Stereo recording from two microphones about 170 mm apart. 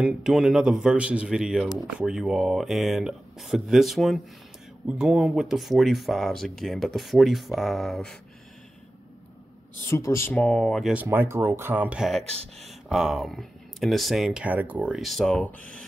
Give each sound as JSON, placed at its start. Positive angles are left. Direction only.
{"t": 0.0, "sound": "speech", "side_deg": -5}
{"t": 9.8, "sound": "speech", "side_deg": 15}
{"t": 12.4, "sound": "speech", "side_deg": -35}
{"t": 12.8, "sound": "speech", "side_deg": 0}